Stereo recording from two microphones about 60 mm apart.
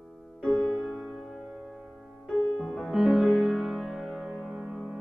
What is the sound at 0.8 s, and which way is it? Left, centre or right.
Music, centre.